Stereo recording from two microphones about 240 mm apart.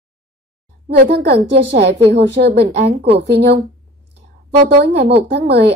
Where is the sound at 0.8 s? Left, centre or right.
Right.